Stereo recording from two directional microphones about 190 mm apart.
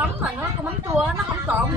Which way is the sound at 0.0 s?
10° right (ahead or behind).